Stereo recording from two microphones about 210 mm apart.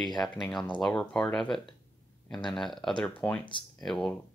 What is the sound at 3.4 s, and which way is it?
Speech, 25° left (ahead or behind).